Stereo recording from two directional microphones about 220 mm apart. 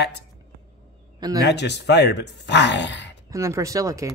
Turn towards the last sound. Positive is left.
turn(degrees=-15)  # may be behind; listen again after turning